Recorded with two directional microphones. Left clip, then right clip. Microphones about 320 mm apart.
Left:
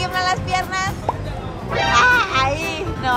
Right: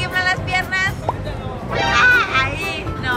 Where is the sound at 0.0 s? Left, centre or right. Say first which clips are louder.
Right 1 dB; centre.